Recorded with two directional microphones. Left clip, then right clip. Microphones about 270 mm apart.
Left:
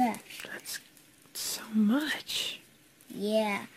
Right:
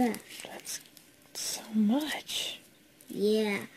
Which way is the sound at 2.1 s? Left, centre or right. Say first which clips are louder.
Left 1 dB; left.